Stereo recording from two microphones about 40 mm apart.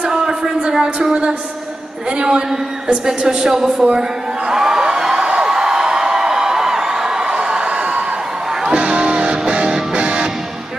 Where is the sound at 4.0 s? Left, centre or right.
Centre.